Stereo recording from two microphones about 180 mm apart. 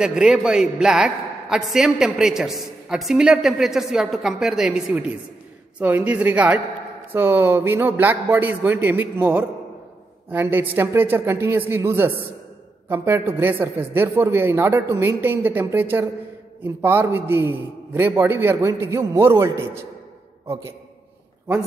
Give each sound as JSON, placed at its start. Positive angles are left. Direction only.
{"t": 0.0, "sound": "a man's voice", "side_deg": -5}